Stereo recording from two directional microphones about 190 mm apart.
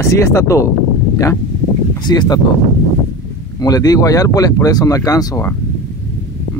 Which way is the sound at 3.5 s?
20° left (ahead or behind).